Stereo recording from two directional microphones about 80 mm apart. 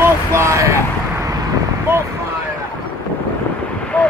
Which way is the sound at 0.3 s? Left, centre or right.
Right.